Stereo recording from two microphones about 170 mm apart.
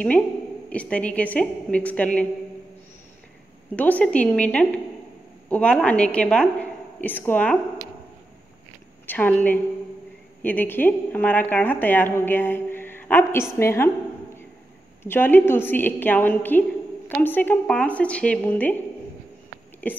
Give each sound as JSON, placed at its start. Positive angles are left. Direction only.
{"t": 0.7, "sound": "a woman's voice", "side_deg": 10}
{"t": 3.7, "sound": "a woman's voice", "side_deg": 10}
{"t": 9.0, "sound": "a woman's voice", "side_deg": 10}
{"t": 15.0, "sound": "a woman's voice", "side_deg": 10}
{"t": 19.8, "sound": "a woman's voice", "side_deg": 10}